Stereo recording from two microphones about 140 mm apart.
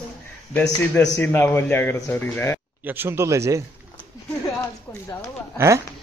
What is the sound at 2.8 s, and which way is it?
Speech, 15° right (ahead or behind).